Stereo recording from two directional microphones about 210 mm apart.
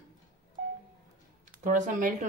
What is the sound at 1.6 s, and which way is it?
Speech, 40° right (ahead or behind).